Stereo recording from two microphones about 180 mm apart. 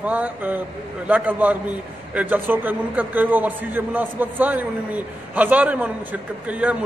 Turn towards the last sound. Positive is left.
turn(degrees=-10)  # may be behind; listen again after turning